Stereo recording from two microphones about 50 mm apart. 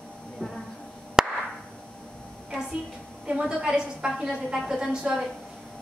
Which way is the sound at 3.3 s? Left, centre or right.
Centre.